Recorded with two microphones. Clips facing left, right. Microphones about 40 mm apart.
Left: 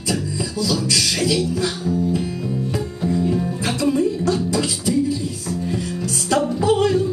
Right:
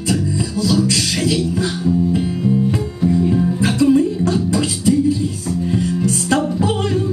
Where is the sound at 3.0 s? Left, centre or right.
Centre.